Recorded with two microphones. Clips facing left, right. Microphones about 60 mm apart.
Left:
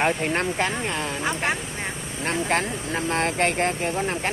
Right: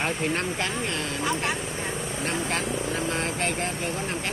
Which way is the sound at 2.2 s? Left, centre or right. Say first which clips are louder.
Left 5 dB; left.